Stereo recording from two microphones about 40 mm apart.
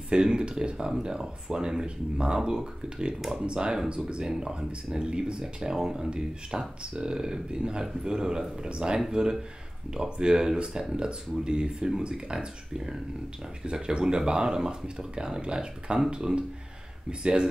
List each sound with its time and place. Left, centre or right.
0.1 s speech: right